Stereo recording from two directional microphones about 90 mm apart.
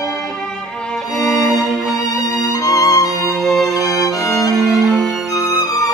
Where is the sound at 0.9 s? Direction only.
5° left (ahead or behind).